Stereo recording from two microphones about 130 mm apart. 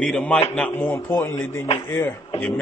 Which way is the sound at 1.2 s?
20° left (ahead or behind).